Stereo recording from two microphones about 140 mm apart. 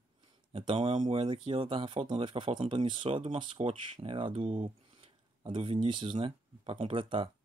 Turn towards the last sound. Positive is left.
turn(degrees=-40)  # may be behind; listen again after turning